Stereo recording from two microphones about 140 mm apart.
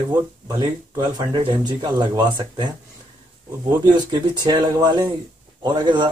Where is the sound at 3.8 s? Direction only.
30° right (ahead or behind).